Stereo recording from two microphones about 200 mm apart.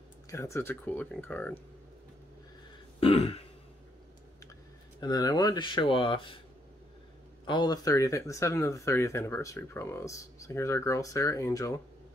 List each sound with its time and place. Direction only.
0.3 s speech: 15° left (ahead or behind)
3.0 s throat clearing: 30° left (ahead or behind)
5.0 s speech: 20° left (ahead or behind)
7.4 s speech: 20° left (ahead or behind)